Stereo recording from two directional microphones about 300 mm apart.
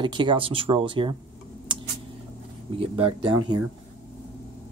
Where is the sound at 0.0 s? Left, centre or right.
Centre.